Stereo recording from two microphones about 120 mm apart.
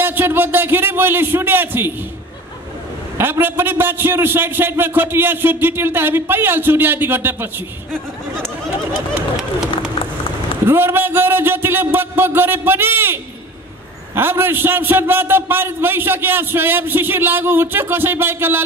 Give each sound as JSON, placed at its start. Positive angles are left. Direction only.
{"t": 0.0, "sound": "a man's voice", "side_deg": -20}
{"t": 3.2, "sound": "a man's voice", "side_deg": -15}
{"t": 10.7, "sound": "a man's voice", "side_deg": -20}